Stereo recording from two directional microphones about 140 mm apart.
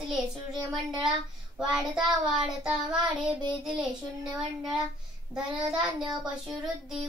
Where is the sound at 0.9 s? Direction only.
30° right (ahead or behind).